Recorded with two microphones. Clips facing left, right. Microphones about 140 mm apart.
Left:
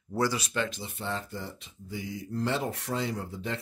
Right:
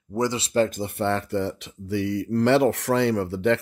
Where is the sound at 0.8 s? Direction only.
65° right (ahead or behind).